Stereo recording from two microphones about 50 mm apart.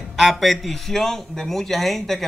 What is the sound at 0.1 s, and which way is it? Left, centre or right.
Speech, centre.